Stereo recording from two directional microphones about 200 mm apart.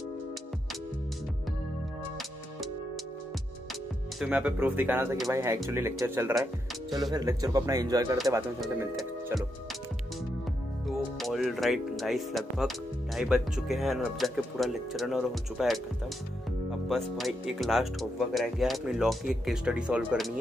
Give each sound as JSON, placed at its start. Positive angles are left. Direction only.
{"t": 4.2, "sound": "speech", "side_deg": -5}
{"t": 10.9, "sound": "speech", "side_deg": 0}
{"t": 16.9, "sound": "speech", "side_deg": 0}